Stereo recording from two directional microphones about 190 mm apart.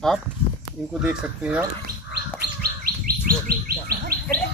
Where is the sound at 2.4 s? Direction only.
55° right (ahead or behind).